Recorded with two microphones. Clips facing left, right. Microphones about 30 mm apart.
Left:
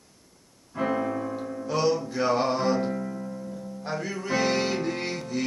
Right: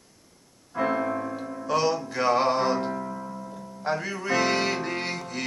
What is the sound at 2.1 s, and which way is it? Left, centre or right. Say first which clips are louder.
Music: right 2 dB; right.